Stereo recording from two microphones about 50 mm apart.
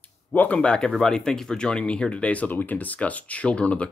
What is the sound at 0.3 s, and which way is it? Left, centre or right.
Speech, left.